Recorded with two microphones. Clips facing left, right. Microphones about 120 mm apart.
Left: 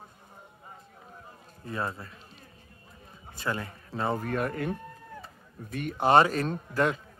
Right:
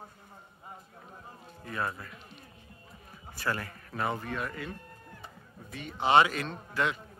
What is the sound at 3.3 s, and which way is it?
Speech, 20° left (ahead or behind).